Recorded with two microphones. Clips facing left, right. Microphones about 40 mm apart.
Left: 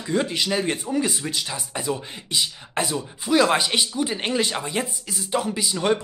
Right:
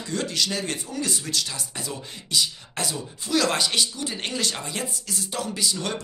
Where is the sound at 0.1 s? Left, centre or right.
Left.